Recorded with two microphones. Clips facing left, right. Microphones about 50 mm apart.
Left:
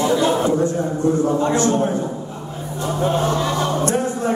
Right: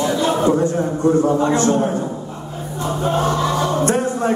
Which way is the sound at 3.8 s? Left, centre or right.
Right.